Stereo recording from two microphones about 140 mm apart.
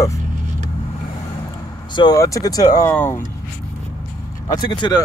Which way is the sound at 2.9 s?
15° left (ahead or behind).